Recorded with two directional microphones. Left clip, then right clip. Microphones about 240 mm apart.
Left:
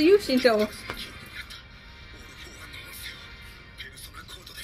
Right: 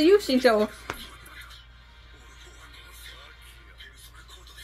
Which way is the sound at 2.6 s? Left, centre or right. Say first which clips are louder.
Left 7 dB; left.